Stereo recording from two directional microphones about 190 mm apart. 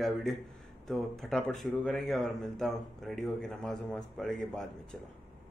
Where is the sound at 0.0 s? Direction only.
Centre (ahead or behind).